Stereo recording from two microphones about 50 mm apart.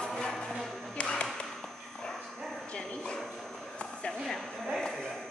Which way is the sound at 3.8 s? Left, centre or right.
Left.